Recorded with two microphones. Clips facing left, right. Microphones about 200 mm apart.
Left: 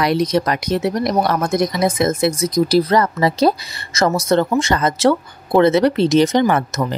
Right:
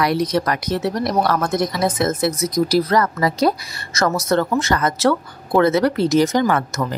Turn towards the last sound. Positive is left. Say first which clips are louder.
# left 2 dB
turn(degrees=20)  # may be behind; listen again after turning